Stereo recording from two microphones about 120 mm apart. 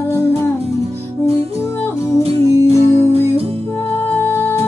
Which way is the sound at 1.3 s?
55° right (ahead or behind).